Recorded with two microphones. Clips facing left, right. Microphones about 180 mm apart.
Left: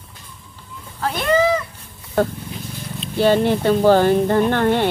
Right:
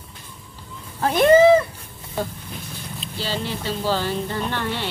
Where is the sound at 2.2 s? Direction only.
60° left (ahead or behind).